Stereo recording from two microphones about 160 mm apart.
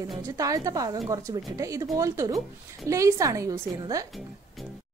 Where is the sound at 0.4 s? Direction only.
20° right (ahead or behind).